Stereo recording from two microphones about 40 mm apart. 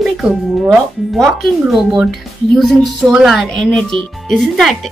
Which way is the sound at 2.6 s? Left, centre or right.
Centre.